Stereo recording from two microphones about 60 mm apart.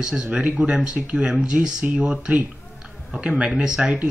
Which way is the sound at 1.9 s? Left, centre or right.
Right.